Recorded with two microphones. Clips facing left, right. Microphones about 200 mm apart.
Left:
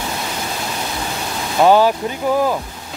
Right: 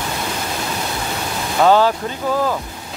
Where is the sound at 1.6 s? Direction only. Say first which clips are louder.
Left 1 dB; 15° left (ahead or behind).